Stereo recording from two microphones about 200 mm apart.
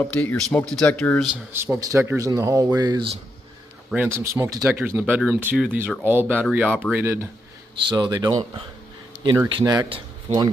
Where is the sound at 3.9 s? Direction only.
10° right (ahead or behind).